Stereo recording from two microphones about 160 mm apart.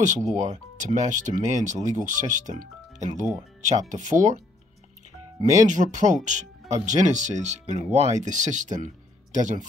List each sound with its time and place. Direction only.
0.0 s speech: 50° right (ahead or behind)
5.7 s speech: 50° right (ahead or behind)